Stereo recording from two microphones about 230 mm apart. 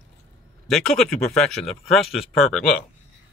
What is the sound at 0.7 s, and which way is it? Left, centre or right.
Speech, centre.